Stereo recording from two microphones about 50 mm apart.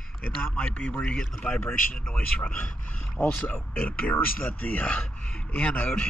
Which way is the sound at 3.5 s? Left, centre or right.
Left.